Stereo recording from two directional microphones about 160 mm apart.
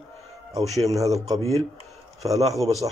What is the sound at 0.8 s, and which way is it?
Speech, 20° right (ahead or behind).